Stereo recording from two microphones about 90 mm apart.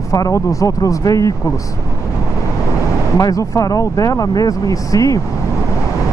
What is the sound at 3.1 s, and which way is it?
Speech, 40° left (ahead or behind).